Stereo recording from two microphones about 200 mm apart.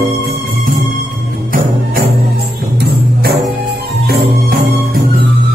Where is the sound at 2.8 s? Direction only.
50° right (ahead or behind).